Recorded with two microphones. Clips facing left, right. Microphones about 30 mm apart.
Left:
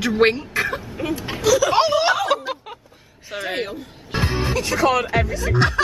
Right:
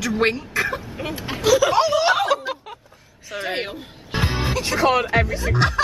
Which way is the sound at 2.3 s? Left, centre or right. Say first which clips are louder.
Even; centre.